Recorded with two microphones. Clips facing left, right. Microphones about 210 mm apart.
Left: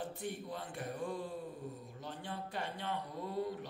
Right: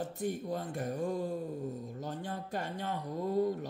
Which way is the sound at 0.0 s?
45° right (ahead or behind).